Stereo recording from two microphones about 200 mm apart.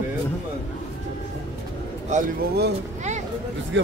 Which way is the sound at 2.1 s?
35° right (ahead or behind).